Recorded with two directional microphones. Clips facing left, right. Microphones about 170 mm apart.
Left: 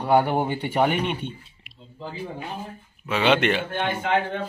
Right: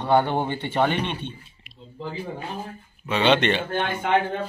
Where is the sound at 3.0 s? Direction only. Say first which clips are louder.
Even; 5° left (ahead or behind).